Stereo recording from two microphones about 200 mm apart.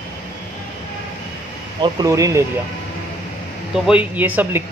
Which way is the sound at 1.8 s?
20° right (ahead or behind).